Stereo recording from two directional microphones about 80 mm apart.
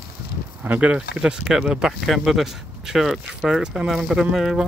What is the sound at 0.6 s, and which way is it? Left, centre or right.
Speech, centre.